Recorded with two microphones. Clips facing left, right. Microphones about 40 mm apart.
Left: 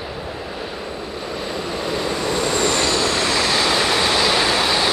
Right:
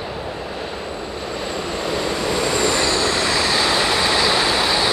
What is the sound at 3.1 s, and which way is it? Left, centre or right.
Vehicle, left.